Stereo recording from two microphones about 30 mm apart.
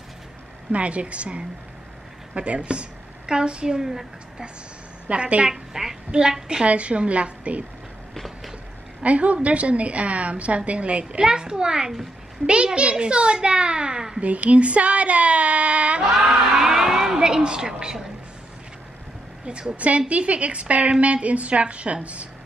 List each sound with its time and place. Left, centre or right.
0.7 s a woman's voice: right
3.6 s a woman's voice: centre
5.0 s a child's voice: right
5.5 s a woman's voice: centre
6.6 s a woman's voice: right
9.0 s a woman's voice: right
12.4 s a child's voice: right
14.2 s a woman's voice: right
16.5 s a sound: centre
17.6 s a woman's voice: right
20.1 s a woman's voice: right